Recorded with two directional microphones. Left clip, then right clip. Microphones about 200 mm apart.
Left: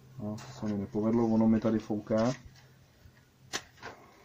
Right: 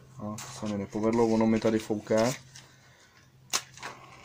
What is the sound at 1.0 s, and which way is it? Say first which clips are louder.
Speech: right 4 dB; 15° right (ahead or behind).